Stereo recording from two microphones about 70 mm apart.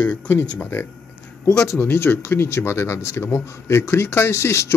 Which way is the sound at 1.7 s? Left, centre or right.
Left.